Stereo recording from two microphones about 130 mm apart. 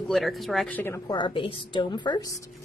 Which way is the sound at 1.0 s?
35° left (ahead or behind).